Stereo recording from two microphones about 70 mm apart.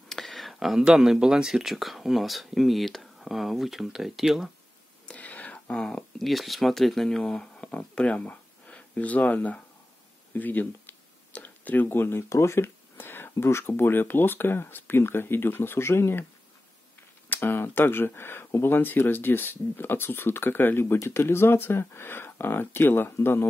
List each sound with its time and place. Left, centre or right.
0.1 s speech: centre
5.0 s whispering: left
5.8 s speech: centre; by 16.3 s left
17.3 s speech: left